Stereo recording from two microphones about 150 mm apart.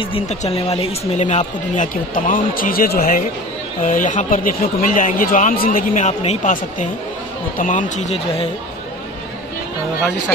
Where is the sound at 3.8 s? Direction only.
60° left (ahead or behind).